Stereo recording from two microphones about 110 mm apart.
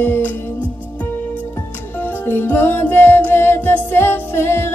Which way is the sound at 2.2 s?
20° left (ahead or behind).